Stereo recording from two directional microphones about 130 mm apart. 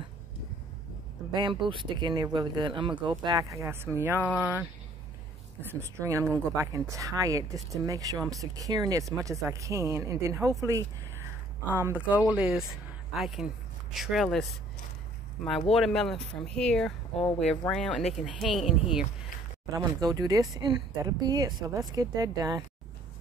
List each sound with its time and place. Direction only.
1.3 s speech: 40° right (ahead or behind); by 4.6 s 10° right (ahead or behind)
5.7 s speech: 20° right (ahead or behind)
11.6 s speech: 15° right (ahead or behind); by 14.6 s centre (ahead or behind)
15.7 s speech: 5° left (ahead or behind)
19.7 s speech: 30° right (ahead or behind)